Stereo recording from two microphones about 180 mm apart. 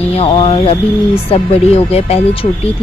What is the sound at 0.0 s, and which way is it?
Speech, 35° left (ahead or behind).